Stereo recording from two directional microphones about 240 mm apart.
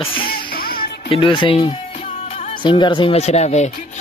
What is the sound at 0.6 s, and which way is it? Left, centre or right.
Music, left.